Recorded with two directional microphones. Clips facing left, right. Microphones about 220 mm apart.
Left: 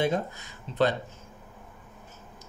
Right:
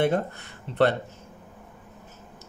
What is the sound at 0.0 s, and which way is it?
Speech, 60° right (ahead or behind).